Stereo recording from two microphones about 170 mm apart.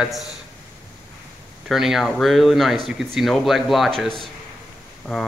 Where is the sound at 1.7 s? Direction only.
Centre (ahead or behind).